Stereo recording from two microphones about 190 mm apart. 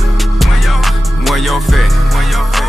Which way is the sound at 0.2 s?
Centre (ahead or behind).